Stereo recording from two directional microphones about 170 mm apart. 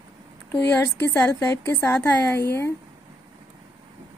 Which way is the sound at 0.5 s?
15° left (ahead or behind).